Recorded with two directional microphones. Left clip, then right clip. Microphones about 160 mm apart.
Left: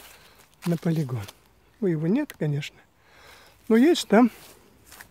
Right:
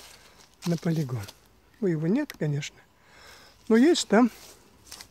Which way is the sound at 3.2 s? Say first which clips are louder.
Even; 20° left (ahead or behind).